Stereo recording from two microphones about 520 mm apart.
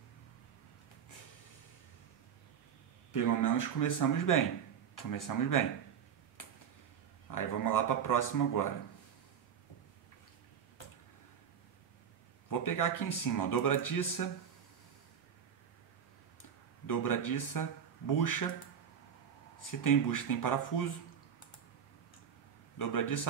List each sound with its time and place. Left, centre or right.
3.1 s speech: left
6.4 s a sound: left
7.2 s speech: left
12.4 s speech: left
16.8 s speech: left
19.6 s speech: left
22.8 s speech: left